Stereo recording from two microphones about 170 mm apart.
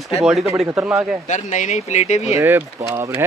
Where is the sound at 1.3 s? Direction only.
45° left (ahead or behind).